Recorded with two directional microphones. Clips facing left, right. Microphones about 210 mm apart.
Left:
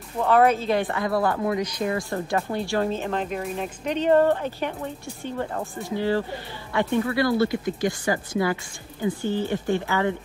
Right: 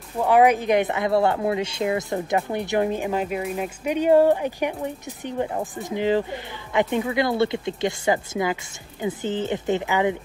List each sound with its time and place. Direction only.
0.2 s speech: 15° right (ahead or behind)